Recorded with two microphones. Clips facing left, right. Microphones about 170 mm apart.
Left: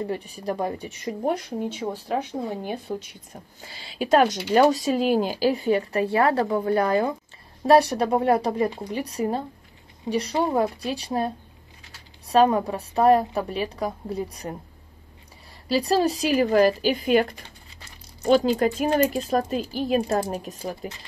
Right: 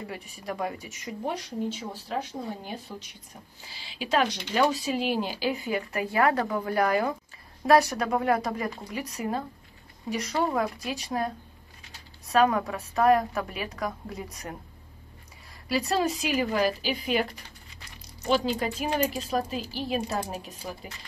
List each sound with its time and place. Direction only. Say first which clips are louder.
0.0 s a woman's voice: left 9 dB; 35° left (ahead or behind)
1.2 s speech: left 4 dB; 55° left (ahead or behind)
3.6 s a woman's voice: left 8 dB; 45° left (ahead or behind); by 14.6 s 30° left (ahead or behind)
15.7 s speech: left 5 dB; 30° left (ahead or behind)